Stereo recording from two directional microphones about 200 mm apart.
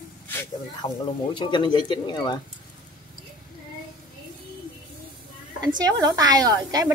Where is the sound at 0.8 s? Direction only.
25° left (ahead or behind).